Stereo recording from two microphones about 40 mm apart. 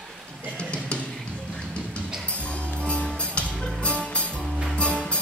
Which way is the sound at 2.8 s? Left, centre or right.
Left.